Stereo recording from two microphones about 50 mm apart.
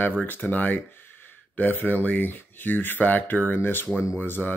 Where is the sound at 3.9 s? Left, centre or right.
Centre.